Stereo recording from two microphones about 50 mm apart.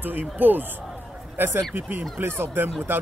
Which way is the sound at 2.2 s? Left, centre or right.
Right.